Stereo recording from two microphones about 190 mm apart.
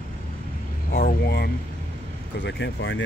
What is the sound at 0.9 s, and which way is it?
Speech, 55° left (ahead or behind).